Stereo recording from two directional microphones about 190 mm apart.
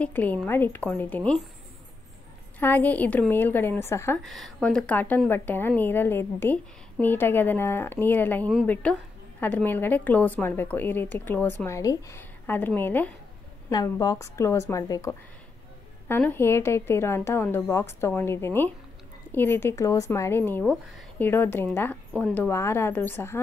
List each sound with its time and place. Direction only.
0.0 s a woman's voice: 10° left (ahead or behind)
2.6 s a woman's voice: 10° left (ahead or behind)
4.2 s a woman's voice: centre (ahead or behind)